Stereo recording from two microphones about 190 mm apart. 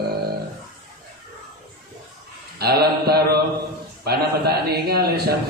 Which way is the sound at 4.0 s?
55° right (ahead or behind).